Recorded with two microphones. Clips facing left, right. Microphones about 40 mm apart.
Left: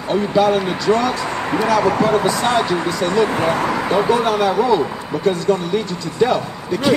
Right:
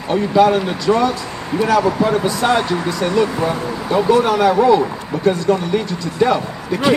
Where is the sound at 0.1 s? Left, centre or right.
Centre.